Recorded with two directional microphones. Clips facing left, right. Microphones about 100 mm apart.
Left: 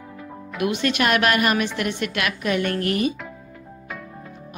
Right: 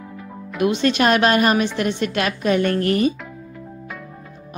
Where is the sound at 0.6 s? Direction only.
30° right (ahead or behind).